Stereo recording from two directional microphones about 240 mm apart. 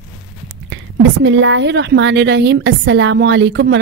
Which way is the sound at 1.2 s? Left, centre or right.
Right.